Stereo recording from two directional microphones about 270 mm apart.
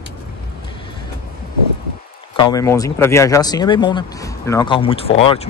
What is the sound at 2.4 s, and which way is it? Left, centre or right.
Speech, centre.